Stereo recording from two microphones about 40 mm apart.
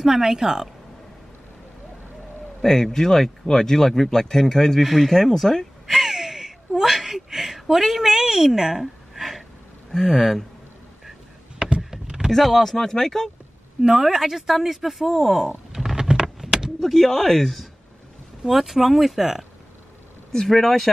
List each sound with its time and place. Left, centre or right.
0.0 s speech: centre
2.6 s speech: centre
5.9 s a sound: centre
9.8 s speech: centre
11.1 s a sound: centre
12.3 s speech: centre
13.7 s a woman's voice: centre
15.7 s power windows: centre
16.4 s vehicle: centre
16.8 s speech: centre
18.5 s speech: centre
20.2 s speech: centre